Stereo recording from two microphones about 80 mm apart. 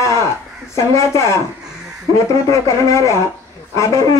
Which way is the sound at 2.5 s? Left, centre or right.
Left.